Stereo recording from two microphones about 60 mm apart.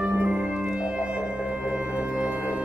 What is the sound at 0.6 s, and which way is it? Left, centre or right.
Music, centre.